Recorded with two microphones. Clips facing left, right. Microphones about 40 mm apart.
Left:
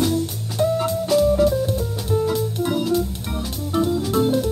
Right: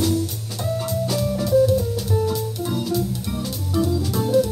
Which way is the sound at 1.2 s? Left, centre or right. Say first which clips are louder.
Left 1 dB; left.